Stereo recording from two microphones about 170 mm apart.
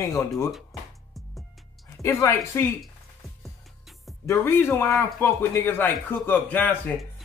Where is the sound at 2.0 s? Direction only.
15° left (ahead or behind).